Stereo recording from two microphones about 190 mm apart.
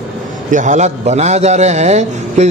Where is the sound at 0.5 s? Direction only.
40° right (ahead or behind).